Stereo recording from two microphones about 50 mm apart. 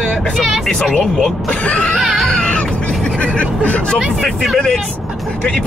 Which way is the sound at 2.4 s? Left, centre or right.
Centre.